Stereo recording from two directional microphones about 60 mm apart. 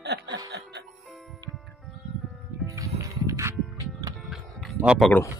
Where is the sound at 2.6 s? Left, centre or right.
Right.